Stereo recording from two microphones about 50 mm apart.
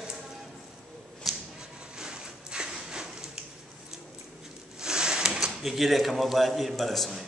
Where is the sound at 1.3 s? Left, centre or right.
Centre.